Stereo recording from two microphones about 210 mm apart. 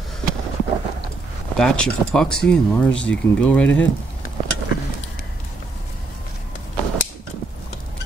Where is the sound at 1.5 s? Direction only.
5° left (ahead or behind).